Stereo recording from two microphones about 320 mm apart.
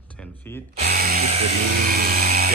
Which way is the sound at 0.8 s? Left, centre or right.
Right.